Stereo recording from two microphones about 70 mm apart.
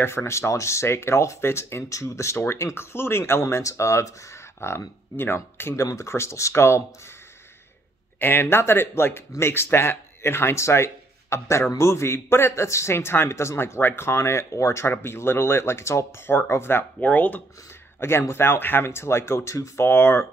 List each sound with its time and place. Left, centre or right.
0.0 s a man's voice: left
5.8 s speech: left
8.2 s a man's voice: left
17.0 s speech: left
18.3 s a man's voice: left